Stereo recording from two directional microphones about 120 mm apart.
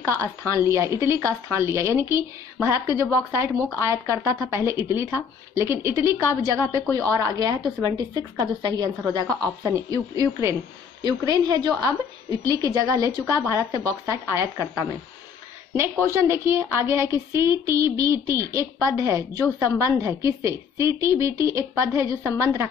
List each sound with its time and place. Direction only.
0.7 s a woman's voice: 25° right (ahead or behind)